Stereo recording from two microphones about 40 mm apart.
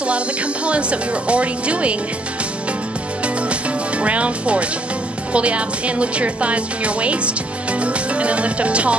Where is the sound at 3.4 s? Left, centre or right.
Right.